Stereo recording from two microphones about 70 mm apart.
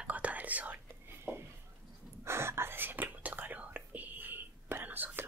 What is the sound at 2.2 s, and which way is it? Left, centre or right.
Whispering, right.